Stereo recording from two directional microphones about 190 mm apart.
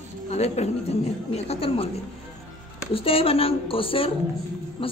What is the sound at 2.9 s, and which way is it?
A woman's voice, 30° left (ahead or behind).